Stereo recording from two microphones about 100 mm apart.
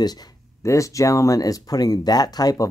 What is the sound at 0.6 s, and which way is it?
Speech, 30° left (ahead or behind).